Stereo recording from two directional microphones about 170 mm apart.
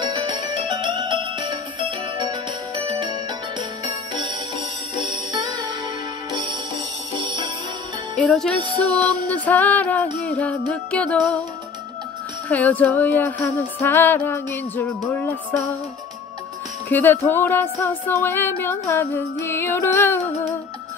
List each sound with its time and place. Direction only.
0.0 s music: 25° right (ahead or behind)
5.3 s music: 25° right (ahead or behind)
8.2 s music: centre (ahead or behind)
12.4 s music: 10° left (ahead or behind)
16.9 s music: 10° left (ahead or behind)